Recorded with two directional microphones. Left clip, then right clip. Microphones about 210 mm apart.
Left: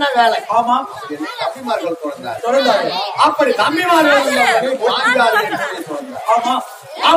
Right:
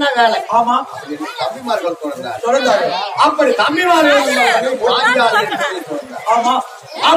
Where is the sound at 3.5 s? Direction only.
Centre (ahead or behind).